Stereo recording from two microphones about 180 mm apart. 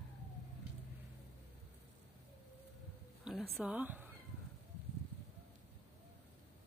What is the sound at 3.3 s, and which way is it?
Speech, centre (ahead or behind).